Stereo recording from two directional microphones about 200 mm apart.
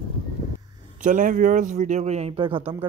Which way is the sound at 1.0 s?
40° right (ahead or behind).